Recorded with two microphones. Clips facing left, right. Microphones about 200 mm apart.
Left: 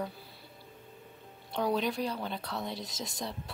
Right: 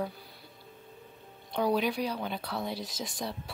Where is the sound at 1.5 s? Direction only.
Centre (ahead or behind).